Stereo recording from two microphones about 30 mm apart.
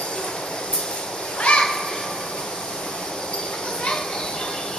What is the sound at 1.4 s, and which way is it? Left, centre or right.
Children playing, left.